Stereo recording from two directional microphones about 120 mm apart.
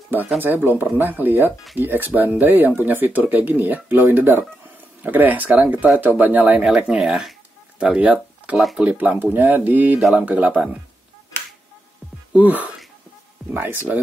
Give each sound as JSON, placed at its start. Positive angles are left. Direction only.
{"t": 0.4, "sound": "speech", "side_deg": -15}
{"t": 12.3, "sound": "speech", "side_deg": -15}
{"t": 13.4, "sound": "music", "side_deg": 0}